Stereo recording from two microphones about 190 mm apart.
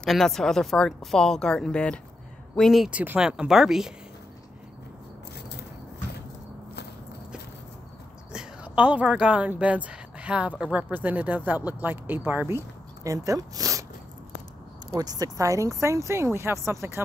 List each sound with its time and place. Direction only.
0.0 s a woman's voice: centre (ahead or behind)
8.3 s speech: 5° right (ahead or behind)
14.9 s speech: 20° right (ahead or behind)